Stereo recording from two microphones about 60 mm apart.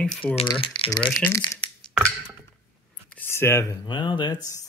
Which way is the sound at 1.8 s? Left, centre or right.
Centre.